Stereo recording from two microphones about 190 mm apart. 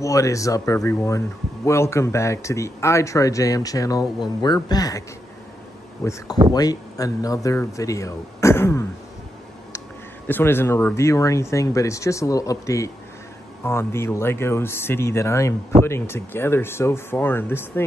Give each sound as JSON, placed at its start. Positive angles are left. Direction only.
{"t": 0.0, "sound": "speech", "side_deg": 15}
{"t": 10.2, "sound": "speech", "side_deg": 10}